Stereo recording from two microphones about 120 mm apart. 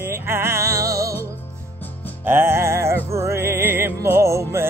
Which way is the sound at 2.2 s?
20° right (ahead or behind).